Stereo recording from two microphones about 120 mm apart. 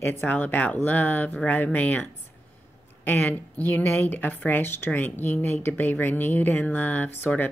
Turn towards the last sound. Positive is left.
turn(degrees=15)  # may be behind; listen again after turning